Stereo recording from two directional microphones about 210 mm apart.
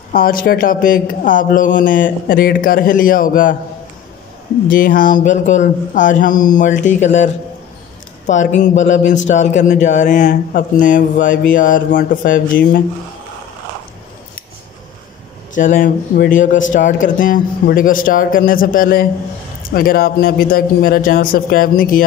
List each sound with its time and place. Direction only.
0.1 s speech: 45° left (ahead or behind)
4.6 s speech: 40° left (ahead or behind)
8.3 s speech: 35° left (ahead or behind)
15.5 s a man's voice: 40° left (ahead or behind)